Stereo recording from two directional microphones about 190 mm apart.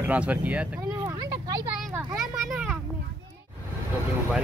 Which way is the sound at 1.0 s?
20° right (ahead or behind).